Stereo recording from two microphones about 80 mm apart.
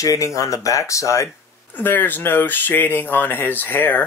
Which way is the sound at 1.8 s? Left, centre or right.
Left.